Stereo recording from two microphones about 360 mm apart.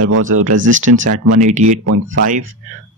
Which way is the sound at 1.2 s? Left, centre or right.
Centre.